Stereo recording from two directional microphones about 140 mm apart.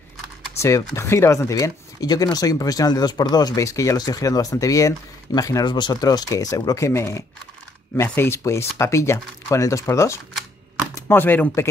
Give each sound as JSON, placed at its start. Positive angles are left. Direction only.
{"t": 0.6, "sound": "speech", "side_deg": 20}